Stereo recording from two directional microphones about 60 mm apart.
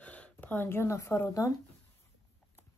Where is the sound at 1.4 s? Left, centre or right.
Left.